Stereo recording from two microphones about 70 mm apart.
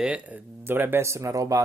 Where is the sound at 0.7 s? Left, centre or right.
Right.